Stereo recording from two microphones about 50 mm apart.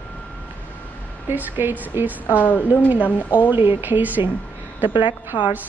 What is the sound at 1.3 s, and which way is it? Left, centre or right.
Speech, right.